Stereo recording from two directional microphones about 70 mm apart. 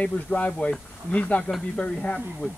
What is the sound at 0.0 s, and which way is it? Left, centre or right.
Speech, left.